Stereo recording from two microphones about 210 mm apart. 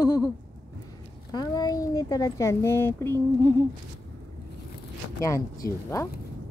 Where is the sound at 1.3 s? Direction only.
20° left (ahead or behind).